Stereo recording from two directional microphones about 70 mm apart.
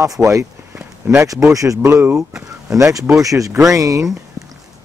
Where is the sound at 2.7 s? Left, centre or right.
Right.